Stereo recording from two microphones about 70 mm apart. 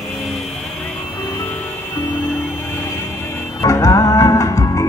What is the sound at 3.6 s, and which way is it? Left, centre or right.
Music, left.